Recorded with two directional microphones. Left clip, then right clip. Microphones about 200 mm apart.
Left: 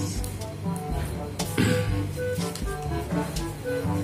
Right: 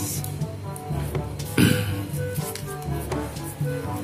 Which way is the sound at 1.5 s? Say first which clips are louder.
Right 4 dB; 40° right (ahead or behind).